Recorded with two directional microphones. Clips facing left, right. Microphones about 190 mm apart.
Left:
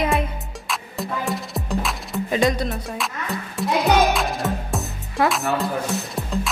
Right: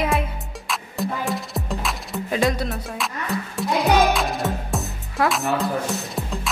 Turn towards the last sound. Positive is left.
turn(degrees=0)  # may be behind; listen again after turning